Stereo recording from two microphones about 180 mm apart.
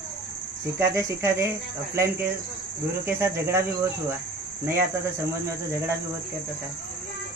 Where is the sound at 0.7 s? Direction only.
15° right (ahead or behind).